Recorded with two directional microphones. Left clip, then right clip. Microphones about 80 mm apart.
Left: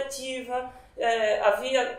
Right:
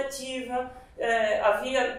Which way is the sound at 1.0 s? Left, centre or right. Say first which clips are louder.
Left 1 dB; left.